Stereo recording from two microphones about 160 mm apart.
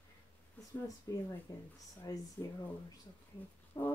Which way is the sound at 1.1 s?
20° left (ahead or behind).